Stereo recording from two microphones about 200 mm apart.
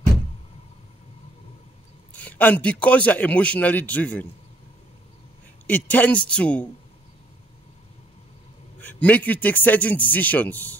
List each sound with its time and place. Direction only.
2.1 s a man's voice: 10° left (ahead or behind)
5.7 s a man's voice: 10° left (ahead or behind)
8.8 s a man's voice: 10° left (ahead or behind)